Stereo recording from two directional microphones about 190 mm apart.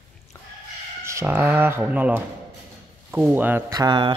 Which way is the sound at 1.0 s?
15° right (ahead or behind).